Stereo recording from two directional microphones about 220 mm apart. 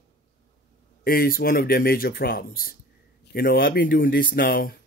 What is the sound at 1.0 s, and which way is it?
Speech, 40° left (ahead or behind).